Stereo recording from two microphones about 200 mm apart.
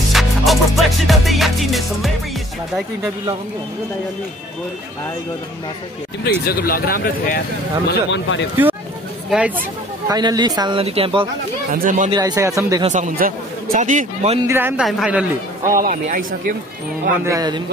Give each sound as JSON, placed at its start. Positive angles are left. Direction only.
{"t": 0.1, "sound": "music", "side_deg": 0}
{"t": 6.2, "sound": "speech", "side_deg": 50}
{"t": 7.9, "sound": "speech", "side_deg": 65}
{"t": 9.3, "sound": "speech", "side_deg": -5}
{"t": 10.0, "sound": "a man's voice", "side_deg": -20}
{"t": 11.7, "sound": "a man's voice", "side_deg": -40}
{"t": 12.1, "sound": "speech", "side_deg": -20}
{"t": 12.9, "sound": "a man's voice", "side_deg": -40}
{"t": 14.4, "sound": "speech", "side_deg": -10}
{"t": 15.7, "sound": "speech", "side_deg": -40}
{"t": 17.2, "sound": "a man's voice", "side_deg": -15}